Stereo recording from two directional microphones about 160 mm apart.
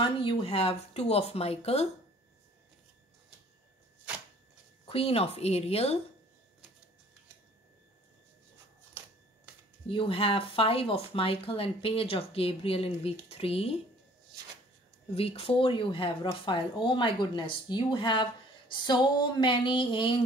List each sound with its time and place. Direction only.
0.0 s speech: 30° left (ahead or behind)
4.8 s speech: 35° left (ahead or behind)
9.8 s speech: 35° left (ahead or behind)
15.1 s speech: 35° left (ahead or behind)